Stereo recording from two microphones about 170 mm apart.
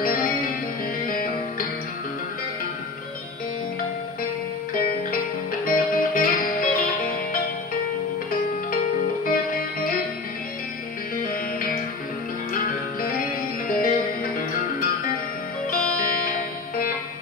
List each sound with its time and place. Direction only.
0.0 s music: 60° left (ahead or behind)
5.1 s music: 55° left (ahead or behind)
9.2 s music: 55° left (ahead or behind)
11.2 s music: 55° left (ahead or behind)
13.7 s music: 55° left (ahead or behind)